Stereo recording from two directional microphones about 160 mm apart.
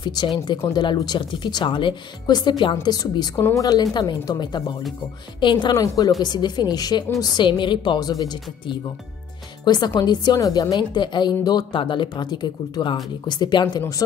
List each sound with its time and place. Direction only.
0.0 s speech: 25° left (ahead or behind)